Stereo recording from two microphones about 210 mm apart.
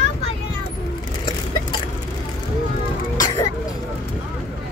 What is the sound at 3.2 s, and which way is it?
Throat clearing, 15° left (ahead or behind).